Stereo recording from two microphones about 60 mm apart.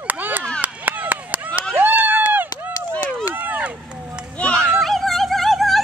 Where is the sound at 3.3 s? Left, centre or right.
Right.